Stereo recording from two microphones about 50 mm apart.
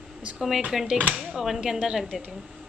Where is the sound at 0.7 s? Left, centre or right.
Centre.